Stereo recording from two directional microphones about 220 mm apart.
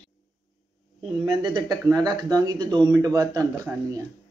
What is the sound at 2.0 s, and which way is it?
Speech, 20° right (ahead or behind).